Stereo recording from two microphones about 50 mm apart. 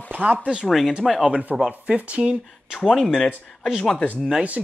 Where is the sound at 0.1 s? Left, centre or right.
Right.